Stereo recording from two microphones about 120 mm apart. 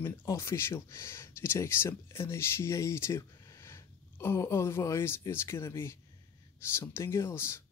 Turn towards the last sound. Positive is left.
turn(degrees=20)  # may be behind; listen again after turning